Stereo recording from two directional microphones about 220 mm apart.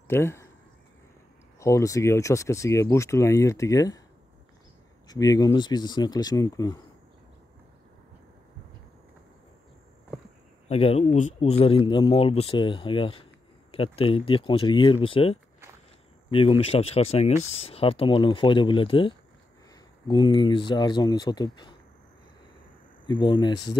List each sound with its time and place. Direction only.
0.1 s speech: 10° left (ahead or behind)
1.6 s speech: 15° left (ahead or behind)
5.0 s speech: 15° left (ahead or behind)
10.7 s speech: 25° left (ahead or behind)
23.0 s speech: 20° left (ahead or behind)